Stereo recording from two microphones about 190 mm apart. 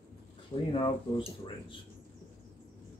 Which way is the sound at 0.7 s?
25° left (ahead or behind).